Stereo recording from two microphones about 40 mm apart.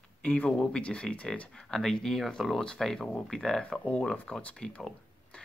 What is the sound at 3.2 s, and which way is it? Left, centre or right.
Speech, centre.